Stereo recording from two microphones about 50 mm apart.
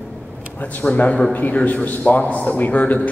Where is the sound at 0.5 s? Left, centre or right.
Left.